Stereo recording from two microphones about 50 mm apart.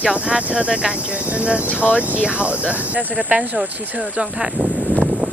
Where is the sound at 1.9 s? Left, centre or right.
Right.